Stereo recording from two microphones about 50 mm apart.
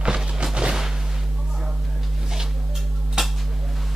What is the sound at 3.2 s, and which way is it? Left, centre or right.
Dishes, centre.